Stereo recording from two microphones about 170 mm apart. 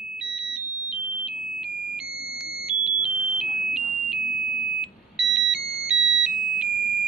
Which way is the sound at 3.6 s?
5° right (ahead or behind).